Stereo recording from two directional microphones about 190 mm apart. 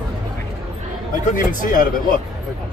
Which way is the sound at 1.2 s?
45° left (ahead or behind).